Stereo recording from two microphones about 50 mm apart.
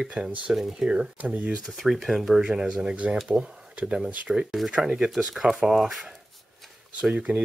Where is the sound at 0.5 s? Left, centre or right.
Centre.